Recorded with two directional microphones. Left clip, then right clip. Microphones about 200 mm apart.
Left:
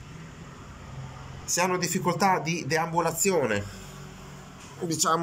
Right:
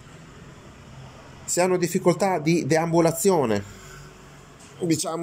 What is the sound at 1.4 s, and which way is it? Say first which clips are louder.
Speech: right 4 dB; 25° right (ahead or behind).